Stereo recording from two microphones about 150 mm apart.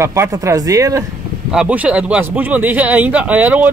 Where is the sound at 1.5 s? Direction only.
5° right (ahead or behind).